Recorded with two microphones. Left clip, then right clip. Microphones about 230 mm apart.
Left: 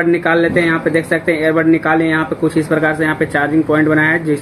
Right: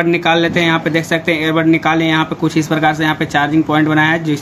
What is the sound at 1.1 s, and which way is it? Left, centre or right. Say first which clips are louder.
Speech: even; right.